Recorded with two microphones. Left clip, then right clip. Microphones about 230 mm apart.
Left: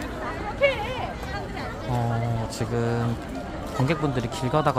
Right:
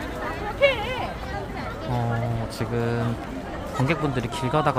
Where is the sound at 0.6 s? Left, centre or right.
Right.